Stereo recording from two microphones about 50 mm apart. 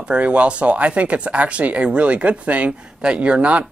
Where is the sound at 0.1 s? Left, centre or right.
Right.